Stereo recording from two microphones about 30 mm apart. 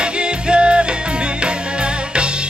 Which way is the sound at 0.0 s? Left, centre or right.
Right.